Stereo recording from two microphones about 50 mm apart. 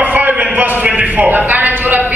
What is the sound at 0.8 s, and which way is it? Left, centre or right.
A man's voice, right.